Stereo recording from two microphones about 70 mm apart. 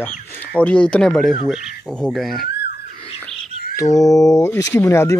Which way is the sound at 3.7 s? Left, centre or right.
Left.